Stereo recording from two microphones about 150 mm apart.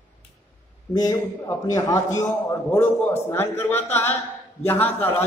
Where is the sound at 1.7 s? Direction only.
25° left (ahead or behind).